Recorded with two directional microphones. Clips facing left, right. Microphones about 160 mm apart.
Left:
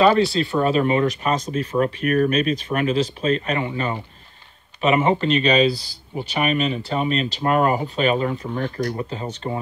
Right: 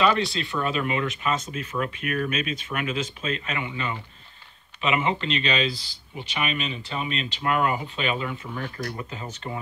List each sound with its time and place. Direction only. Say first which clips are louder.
0.0 s speech: left 7 dB; 35° left (ahead or behind)